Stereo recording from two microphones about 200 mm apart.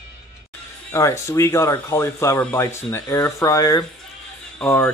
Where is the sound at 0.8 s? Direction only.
15° left (ahead or behind).